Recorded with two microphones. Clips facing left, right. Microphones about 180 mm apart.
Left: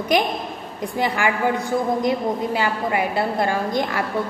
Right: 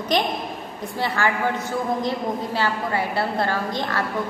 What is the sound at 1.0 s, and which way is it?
A woman's voice, 15° left (ahead or behind).